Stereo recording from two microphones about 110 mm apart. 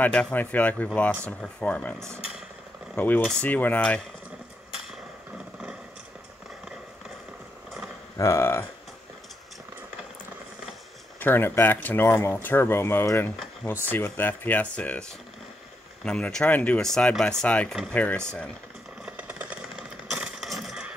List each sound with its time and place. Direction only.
0.0 s speech: 15° left (ahead or behind)
8.2 s speech: 25° left (ahead or behind)
11.1 s speech: 20° left (ahead or behind)
19.0 s coin: 15° right (ahead or behind)